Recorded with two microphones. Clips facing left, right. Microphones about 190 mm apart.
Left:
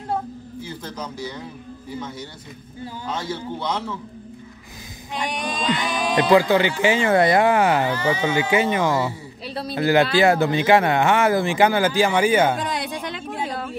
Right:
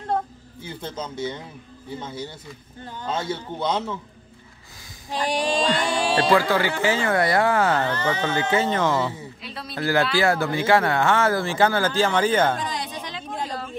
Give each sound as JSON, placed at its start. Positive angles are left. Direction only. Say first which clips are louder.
{"t": 0.8, "sound": "a man's voice", "louder": "right 5 dB", "side_deg": -25}
{"t": 5.1, "sound": "music", "louder": "right 4 dB", "side_deg": -30}
{"t": 6.3, "sound": "speech", "louder": "left 7 dB", "side_deg": 20}
{"t": 9.4, "sound": "a sound", "louder": "left 7 dB", "side_deg": 35}
{"t": 9.8, "sound": "speech", "louder": "left 4 dB", "side_deg": 20}
{"t": 12.6, "sound": "a sound", "louder": "left 4 dB", "side_deg": 65}